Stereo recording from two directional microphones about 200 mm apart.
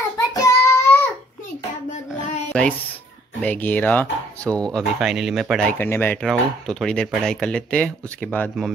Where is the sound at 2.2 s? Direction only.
5° left (ahead or behind).